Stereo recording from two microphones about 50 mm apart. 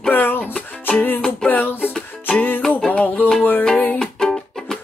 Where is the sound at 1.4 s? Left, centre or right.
Left.